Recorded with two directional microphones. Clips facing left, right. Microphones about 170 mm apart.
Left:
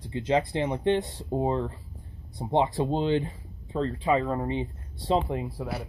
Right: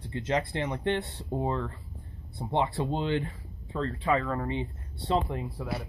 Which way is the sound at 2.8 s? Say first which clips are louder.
Left 4 dB; 35° left (ahead or behind).